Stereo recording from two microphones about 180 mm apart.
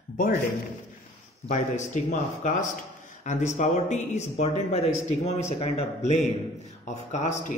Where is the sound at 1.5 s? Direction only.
40° left (ahead or behind).